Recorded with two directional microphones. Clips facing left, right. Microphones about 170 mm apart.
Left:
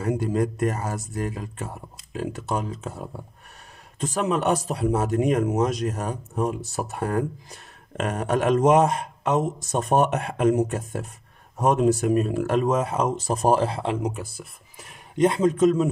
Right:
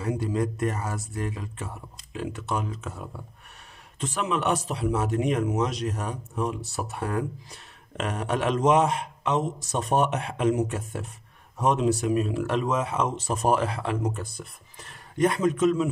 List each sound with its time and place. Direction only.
0.0 s speech: 50° left (ahead or behind); by 13.9 s 30° left (ahead or behind)
14.0 s speech: 10° left (ahead or behind)
15.1 s speech: 25° left (ahead or behind)